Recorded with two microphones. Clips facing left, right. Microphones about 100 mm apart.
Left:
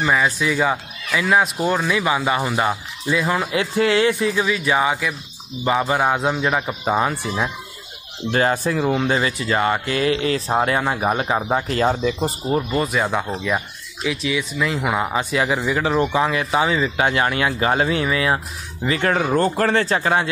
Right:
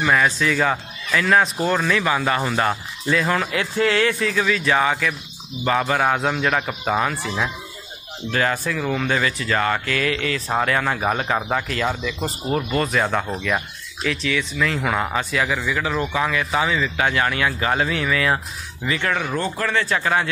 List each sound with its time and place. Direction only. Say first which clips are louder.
0.0 s speech: even; 10° left (ahead or behind)
6.9 s speech: left 2 dB; 25° left (ahead or behind)
8.3 s speech: left 3 dB; 30° left (ahead or behind)
11.6 s speech: left 5 dB; 35° left (ahead or behind)
12.7 s speech: even; 10° left (ahead or behind)
15.4 s speech: left 3 dB; 30° left (ahead or behind)
18.9 s speech: left 4 dB; 35° left (ahead or behind)